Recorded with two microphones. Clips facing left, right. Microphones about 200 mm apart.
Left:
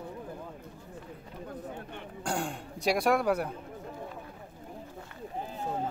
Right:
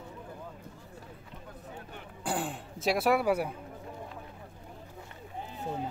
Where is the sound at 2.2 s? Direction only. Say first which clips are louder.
Even; 5° right (ahead or behind).